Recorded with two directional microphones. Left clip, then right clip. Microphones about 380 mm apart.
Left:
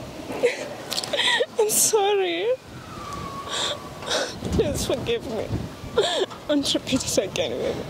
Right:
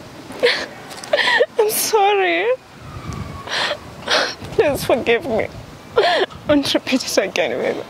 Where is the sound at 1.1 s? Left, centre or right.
Right.